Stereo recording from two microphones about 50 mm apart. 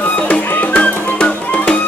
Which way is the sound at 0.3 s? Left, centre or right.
Left.